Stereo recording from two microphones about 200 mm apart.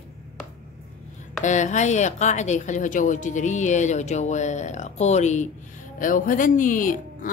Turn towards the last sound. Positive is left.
turn(degrees=40)  # may be behind; listen again after turning